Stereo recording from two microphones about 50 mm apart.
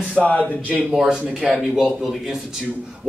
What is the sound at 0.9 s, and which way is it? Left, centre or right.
A man's voice, centre.